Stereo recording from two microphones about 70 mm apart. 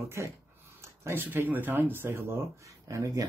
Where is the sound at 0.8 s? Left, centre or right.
Right.